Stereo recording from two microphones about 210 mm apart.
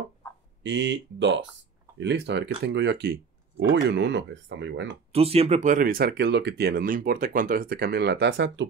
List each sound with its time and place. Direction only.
0.7 s speech: 60° right (ahead or behind)
5.1 s speech: 30° right (ahead or behind); by 8.6 s 55° right (ahead or behind)